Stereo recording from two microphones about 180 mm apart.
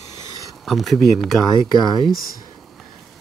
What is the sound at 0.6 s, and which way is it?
Speech, centre (ahead or behind).